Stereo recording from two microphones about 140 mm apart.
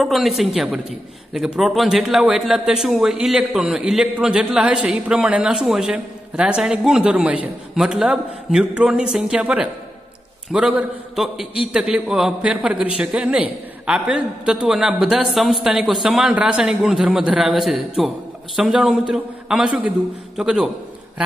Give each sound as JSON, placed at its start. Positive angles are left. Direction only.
{"t": 0.0, "sound": "a man's voice", "side_deg": 0}